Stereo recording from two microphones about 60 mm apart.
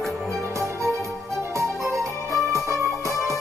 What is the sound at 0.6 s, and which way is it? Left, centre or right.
Music, right.